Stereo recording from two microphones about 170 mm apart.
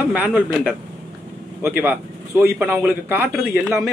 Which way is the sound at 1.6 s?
10° right (ahead or behind).